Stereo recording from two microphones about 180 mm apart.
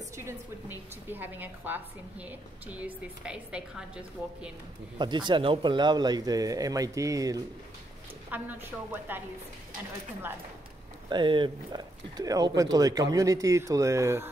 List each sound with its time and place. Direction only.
0.2 s a woman's voice: 15° right (ahead or behind)
4.9 s a woman's voice: 25° right (ahead or behind)
11.1 s speech: 25° right (ahead or behind)